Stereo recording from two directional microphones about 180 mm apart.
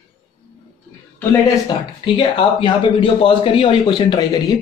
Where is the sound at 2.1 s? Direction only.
25° left (ahead or behind).